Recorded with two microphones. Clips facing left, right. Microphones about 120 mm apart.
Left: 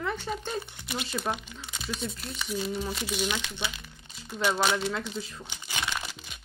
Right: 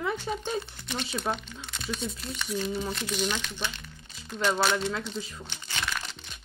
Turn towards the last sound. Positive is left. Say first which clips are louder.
# left 1 dB
turn(degrees=10)  # may be behind; listen again after turning